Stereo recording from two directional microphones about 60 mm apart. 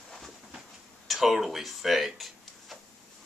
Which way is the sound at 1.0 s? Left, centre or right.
Centre.